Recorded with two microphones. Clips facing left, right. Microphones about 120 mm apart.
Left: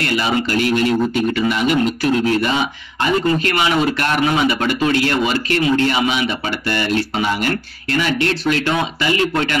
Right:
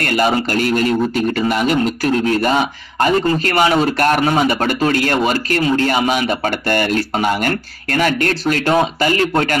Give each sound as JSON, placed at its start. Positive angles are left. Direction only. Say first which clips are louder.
{"t": 0.0, "sound": "a man's voice", "louder": "right 3 dB", "side_deg": -45}